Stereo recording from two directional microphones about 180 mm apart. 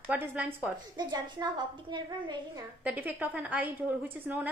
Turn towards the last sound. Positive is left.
turn(degrees=-10)  # may be behind; listen again after turning